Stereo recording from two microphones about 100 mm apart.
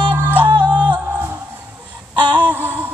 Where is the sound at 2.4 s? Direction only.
20° right (ahead or behind).